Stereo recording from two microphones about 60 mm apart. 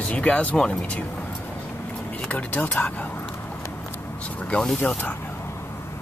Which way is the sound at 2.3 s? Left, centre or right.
Left.